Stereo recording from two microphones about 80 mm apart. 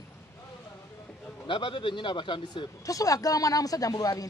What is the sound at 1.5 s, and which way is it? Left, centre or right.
Speech, left.